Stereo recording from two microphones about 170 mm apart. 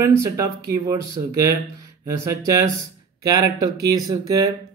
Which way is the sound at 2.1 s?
15° right (ahead or behind).